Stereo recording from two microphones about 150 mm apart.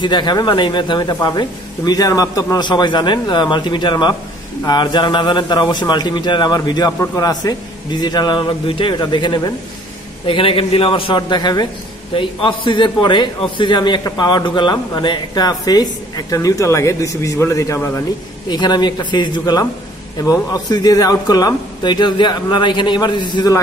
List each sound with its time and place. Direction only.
0.0 s a man's voice: 30° left (ahead or behind)